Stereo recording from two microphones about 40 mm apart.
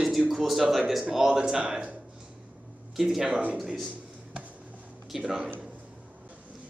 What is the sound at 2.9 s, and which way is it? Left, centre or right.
Speech, centre.